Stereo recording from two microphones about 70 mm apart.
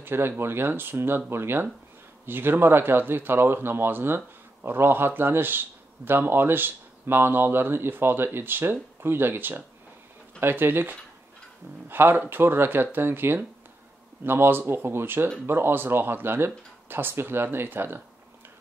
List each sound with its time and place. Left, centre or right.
0.0 s speech: right